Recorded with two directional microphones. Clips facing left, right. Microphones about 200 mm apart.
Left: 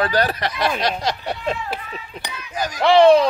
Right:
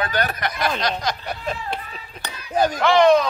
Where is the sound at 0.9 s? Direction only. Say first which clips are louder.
Left 2 dB; 30° left (ahead or behind).